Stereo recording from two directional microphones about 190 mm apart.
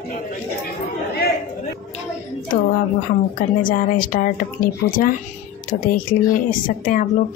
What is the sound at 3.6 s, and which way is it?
Speech, 45° left (ahead or behind).